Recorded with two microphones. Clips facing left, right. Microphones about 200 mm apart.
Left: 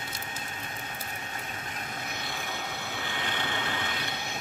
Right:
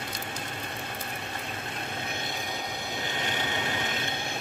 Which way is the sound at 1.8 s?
30° right (ahead or behind).